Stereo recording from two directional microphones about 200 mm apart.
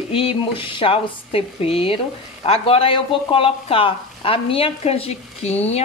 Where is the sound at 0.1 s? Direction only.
25° left (ahead or behind).